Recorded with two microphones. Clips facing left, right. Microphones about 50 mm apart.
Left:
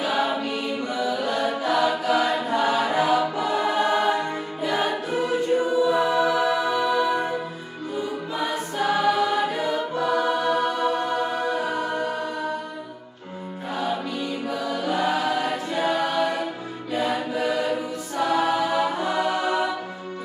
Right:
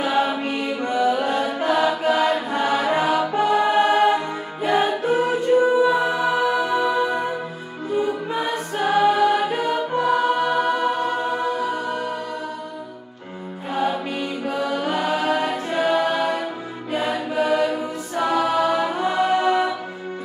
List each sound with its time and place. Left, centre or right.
0.0 s music: right
8.0 s choir: right
13.7 s music: right
17.3 s choir: right
18.5 s music: right